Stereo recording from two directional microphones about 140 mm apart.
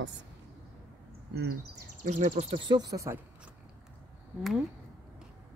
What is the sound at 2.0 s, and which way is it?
Speech, 60° right (ahead or behind).